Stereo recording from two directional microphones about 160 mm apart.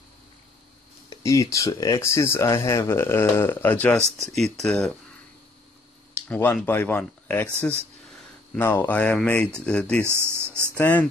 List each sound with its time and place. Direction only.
1.1 s speech: 20° left (ahead or behind); by 4.9 s 5° left (ahead or behind)
6.1 s speech: 10° left (ahead or behind)
8.5 s speech: 15° left (ahead or behind)
10.0 s speech: 15° right (ahead or behind)
10.8 s speech: 10° left (ahead or behind)